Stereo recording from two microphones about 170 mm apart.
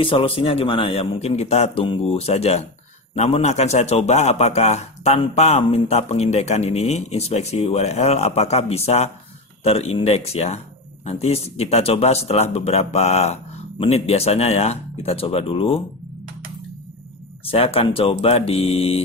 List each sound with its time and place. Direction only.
0.0 s a man's voice: 30° left (ahead or behind)
17.5 s a man's voice: 35° left (ahead or behind)